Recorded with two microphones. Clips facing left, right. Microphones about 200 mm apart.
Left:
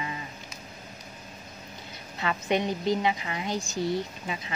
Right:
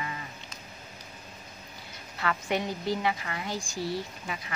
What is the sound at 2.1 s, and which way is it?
A woman's voice, 20° left (ahead or behind).